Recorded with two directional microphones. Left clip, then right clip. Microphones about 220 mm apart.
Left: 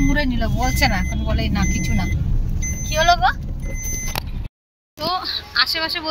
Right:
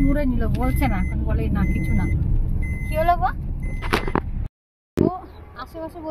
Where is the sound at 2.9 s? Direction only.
5° left (ahead or behind).